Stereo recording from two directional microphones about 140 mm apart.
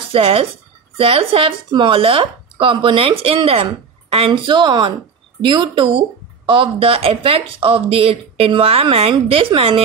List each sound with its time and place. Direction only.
0.1 s speech: 40° right (ahead or behind)